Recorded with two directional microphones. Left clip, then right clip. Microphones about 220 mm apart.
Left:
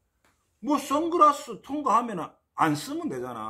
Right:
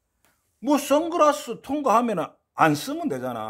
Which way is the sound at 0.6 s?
50° right (ahead or behind).